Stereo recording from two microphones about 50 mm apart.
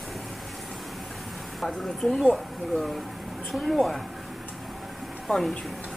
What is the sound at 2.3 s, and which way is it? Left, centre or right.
Speech, centre.